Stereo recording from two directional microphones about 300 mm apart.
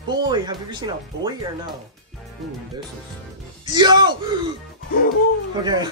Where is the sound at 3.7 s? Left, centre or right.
Centre.